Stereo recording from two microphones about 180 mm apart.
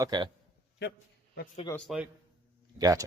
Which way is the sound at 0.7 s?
65° left (ahead or behind).